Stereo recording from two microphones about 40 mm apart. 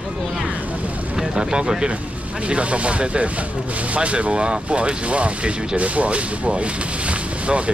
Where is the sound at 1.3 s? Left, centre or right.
Centre.